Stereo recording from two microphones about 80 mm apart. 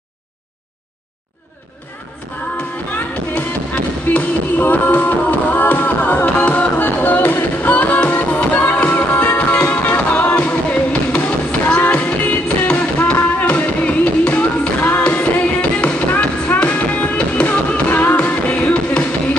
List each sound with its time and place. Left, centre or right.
3.3 s music: left